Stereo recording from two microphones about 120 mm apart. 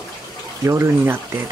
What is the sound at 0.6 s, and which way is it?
Speech, 20° right (ahead or behind).